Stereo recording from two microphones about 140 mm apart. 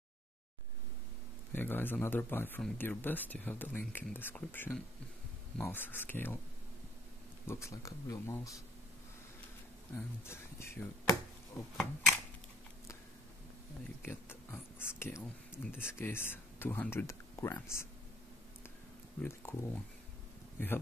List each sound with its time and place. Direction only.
1.5 s speech: 15° left (ahead or behind)
7.4 s speech: 20° left (ahead or behind)
9.9 s speech: 20° left (ahead or behind)
11.7 s speech: centre (ahead or behind)
14.0 s speech: 15° left (ahead or behind)
19.2 s speech: 15° left (ahead or behind)